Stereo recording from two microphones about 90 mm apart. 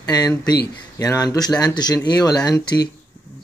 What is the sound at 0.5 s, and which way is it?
A man's voice, 35° left (ahead or behind).